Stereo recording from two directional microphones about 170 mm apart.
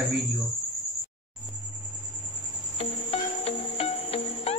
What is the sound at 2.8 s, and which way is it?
Cricket, 35° left (ahead or behind).